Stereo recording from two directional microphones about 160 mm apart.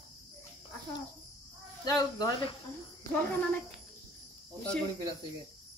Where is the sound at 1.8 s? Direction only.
25° left (ahead or behind).